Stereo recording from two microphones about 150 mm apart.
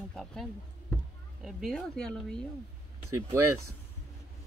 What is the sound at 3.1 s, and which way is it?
Speech, 20° right (ahead or behind).